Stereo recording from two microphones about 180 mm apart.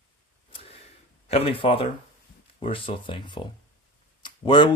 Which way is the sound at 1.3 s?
30° left (ahead or behind).